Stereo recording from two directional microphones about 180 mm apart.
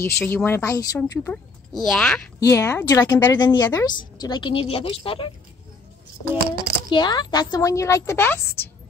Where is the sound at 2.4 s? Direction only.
15° left (ahead or behind).